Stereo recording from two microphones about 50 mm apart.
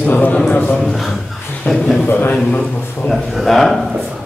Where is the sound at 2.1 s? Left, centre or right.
Left.